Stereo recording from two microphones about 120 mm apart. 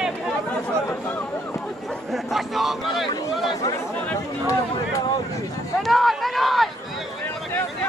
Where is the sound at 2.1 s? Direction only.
Centre (ahead or behind).